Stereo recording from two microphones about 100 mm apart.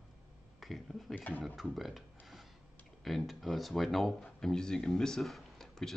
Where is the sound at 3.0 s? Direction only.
Centre (ahead or behind).